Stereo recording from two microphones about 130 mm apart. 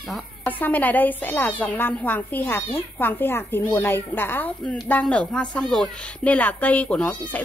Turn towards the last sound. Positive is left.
turn(degrees=10)  # may be behind; listen again after turning